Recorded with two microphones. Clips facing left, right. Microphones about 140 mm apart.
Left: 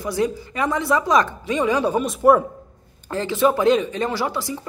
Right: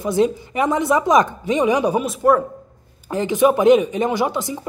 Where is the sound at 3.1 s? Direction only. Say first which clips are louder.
Right 3 dB; 15° right (ahead or behind).